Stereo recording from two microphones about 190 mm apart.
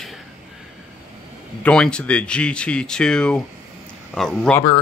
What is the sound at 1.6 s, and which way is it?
Speech, 5° left (ahead or behind).